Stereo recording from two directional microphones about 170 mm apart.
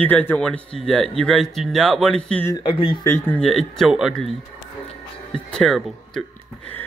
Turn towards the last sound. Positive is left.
turn(degrees=0)  # may be behind; listen again after turning